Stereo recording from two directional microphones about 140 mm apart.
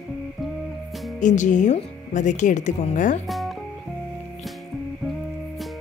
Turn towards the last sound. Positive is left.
turn(degrees=0)  # may be behind; listen again after turning